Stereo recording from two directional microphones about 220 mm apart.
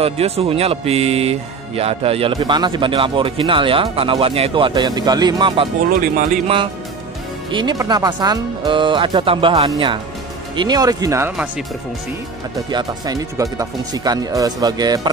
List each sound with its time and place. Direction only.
0.0 s speech: 25° right (ahead or behind); by 11.6 s 5° right (ahead or behind)
12.6 s speech: 20° right (ahead or behind)